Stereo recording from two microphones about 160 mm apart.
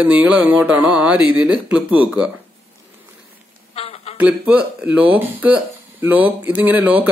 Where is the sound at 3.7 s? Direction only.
40° left (ahead or behind).